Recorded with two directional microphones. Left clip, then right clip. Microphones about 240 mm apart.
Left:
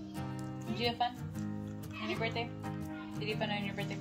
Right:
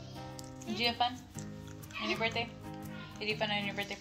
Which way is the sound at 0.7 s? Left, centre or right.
Centre.